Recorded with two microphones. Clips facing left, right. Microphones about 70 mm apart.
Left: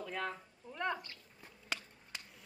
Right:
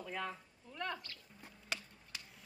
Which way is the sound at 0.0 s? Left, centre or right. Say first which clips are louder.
Left 2 dB; centre.